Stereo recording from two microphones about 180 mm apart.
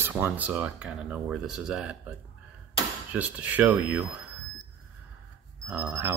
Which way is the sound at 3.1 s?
10° right (ahead or behind).